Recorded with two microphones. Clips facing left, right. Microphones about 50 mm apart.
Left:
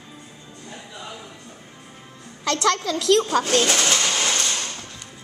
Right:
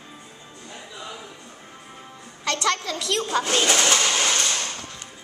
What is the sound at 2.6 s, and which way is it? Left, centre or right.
Speech, left.